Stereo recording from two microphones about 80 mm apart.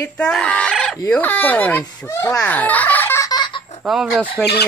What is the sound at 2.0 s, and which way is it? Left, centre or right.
Speech, left.